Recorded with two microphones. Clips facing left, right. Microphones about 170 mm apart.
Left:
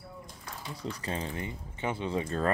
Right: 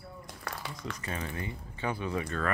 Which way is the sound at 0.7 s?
30° left (ahead or behind).